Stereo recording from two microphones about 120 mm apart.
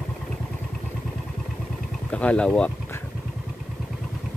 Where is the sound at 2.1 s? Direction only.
10° left (ahead or behind).